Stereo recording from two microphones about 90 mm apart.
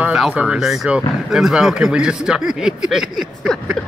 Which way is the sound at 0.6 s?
Centre (ahead or behind).